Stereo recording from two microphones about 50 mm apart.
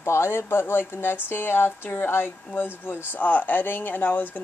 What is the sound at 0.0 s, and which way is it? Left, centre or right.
Speech, left.